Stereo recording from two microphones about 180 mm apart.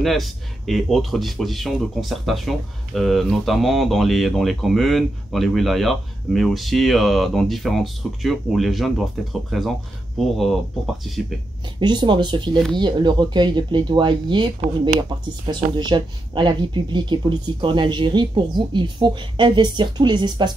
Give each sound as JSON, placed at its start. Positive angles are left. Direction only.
{"t": 0.0, "sound": "speech", "side_deg": 0}
{"t": 11.1, "sound": "speech", "side_deg": 0}
{"t": 11.8, "sound": "speech", "side_deg": -25}